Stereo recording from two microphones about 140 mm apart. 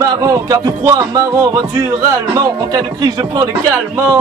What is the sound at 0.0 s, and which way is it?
Speech, 25° right (ahead or behind).